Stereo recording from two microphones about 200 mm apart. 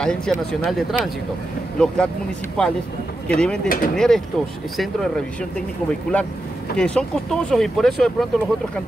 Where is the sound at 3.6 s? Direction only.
45° left (ahead or behind).